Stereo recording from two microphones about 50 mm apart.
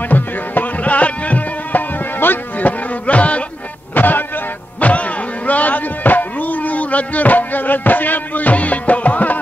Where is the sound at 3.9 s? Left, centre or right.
Left.